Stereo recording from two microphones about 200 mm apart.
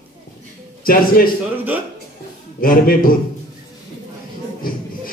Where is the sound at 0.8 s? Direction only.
45° left (ahead or behind).